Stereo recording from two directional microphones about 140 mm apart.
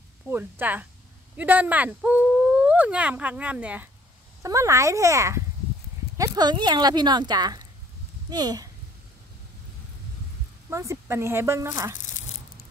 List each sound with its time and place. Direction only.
0.3 s speech: 15° right (ahead or behind)
4.4 s speech: 20° right (ahead or behind)
10.7 s speech: 20° right (ahead or behind)